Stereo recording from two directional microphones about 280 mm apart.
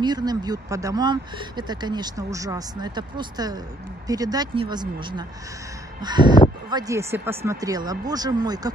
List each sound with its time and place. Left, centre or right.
0.0 s speech: centre